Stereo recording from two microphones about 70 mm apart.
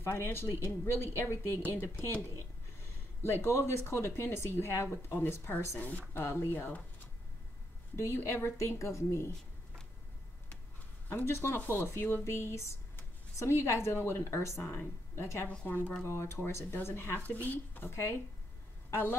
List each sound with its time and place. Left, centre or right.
0.0 s a woman's voice: left
5.8 s a woman's voice: left
6.2 s a woman's voice: left
7.9 s a woman's voice: left
11.2 s a woman's voice: left
15.4 s a woman's voice: left
16.0 s a woman's voice: left